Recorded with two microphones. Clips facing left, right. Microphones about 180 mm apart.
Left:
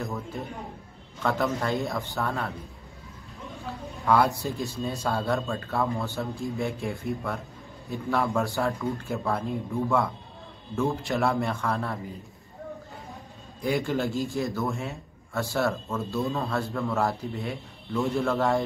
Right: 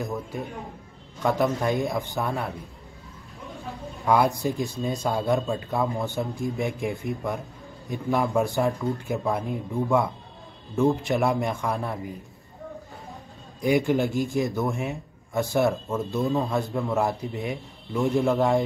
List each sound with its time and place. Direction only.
1.2 s a man's voice: 15° right (ahead or behind)
4.0 s a man's voice: 15° right (ahead or behind)
13.6 s a man's voice: 15° right (ahead or behind)